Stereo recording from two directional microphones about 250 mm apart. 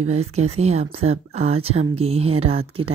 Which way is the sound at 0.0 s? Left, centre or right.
Right.